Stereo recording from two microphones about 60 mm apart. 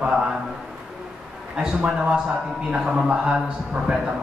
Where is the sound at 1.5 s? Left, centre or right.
Centre.